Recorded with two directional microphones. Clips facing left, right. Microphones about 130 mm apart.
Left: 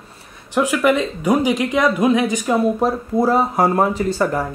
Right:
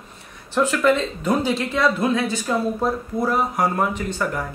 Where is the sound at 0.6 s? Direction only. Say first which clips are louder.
Left 2 dB; 10° left (ahead or behind).